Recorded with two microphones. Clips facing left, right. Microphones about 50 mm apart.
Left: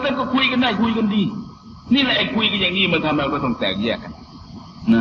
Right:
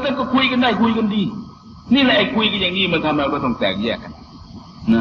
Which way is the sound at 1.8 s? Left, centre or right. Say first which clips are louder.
Right 3 dB; centre.